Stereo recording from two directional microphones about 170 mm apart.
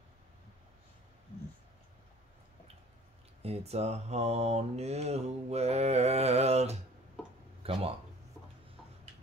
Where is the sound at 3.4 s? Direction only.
40° right (ahead or behind).